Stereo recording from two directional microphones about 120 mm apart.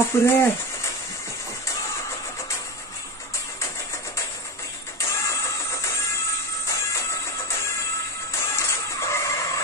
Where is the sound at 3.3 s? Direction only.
25° left (ahead or behind).